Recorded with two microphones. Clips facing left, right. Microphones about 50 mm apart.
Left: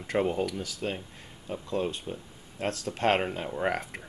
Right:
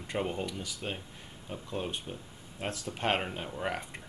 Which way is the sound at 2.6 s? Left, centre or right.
Left.